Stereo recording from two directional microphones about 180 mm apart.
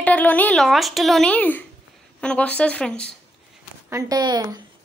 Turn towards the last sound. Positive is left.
turn(degrees=-20)  # may be behind; listen again after turning